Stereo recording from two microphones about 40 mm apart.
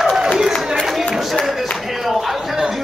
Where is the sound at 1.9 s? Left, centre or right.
Centre.